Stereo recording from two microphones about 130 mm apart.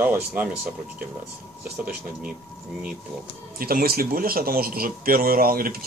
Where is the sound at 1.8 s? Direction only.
10° right (ahead or behind).